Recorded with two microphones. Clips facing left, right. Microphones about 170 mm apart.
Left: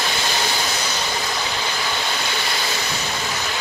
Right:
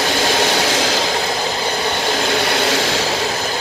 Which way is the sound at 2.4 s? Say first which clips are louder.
Right 9 dB; 70° right (ahead or behind).